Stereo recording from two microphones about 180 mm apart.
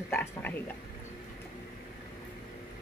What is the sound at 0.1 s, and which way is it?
Speech, 10° left (ahead or behind).